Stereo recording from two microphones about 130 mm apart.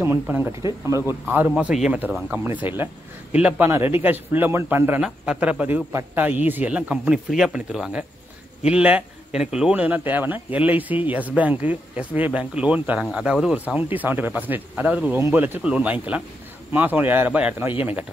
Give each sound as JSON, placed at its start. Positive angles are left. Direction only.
{"t": 0.0, "sound": "a man's voice", "side_deg": -15}